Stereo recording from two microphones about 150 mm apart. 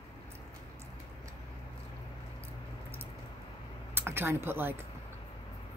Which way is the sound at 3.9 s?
15° right (ahead or behind).